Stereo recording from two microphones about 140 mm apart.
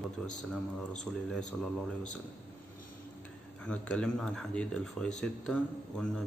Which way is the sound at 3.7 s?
5° left (ahead or behind).